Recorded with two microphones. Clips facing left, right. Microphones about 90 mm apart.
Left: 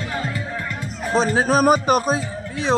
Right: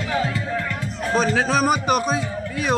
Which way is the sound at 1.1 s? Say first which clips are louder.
Left 2 dB; 35° left (ahead or behind).